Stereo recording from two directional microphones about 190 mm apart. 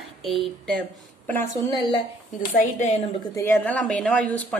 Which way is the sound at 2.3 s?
40° left (ahead or behind).